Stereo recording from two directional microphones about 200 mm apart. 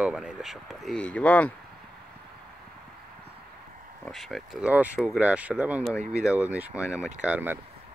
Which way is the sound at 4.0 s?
Centre (ahead or behind).